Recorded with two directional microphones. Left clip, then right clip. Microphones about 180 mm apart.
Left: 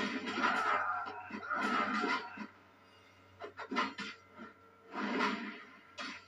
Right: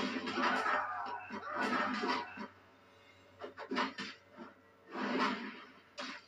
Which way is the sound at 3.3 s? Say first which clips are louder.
Left 1 dB; 35° right (ahead or behind).